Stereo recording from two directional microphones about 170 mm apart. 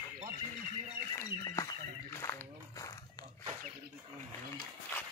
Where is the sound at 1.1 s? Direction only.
25° left (ahead or behind).